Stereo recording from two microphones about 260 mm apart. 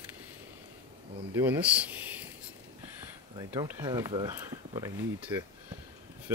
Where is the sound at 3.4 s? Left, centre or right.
Centre.